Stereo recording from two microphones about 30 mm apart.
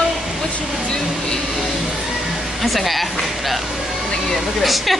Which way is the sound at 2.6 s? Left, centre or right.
Centre.